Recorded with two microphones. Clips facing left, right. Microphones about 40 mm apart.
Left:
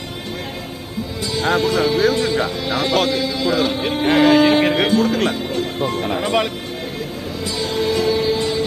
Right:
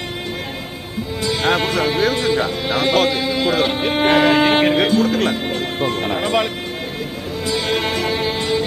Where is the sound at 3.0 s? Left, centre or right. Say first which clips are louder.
Right 1 dB; right.